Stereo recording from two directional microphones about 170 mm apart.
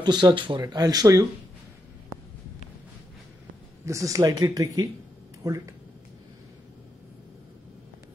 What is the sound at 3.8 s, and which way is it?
Speech, 20° right (ahead or behind).